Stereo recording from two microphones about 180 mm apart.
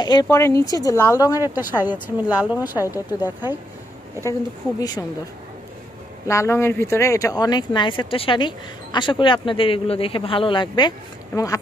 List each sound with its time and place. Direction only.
0.0 s speech: 20° left (ahead or behind)
1.4 s a woman's voice: 10° right (ahead or behind)
4.2 s speech: 20° left (ahead or behind)
6.2 s speech: 15° left (ahead or behind)